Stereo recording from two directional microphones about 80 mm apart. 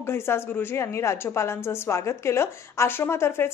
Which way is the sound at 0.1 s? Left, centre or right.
Left.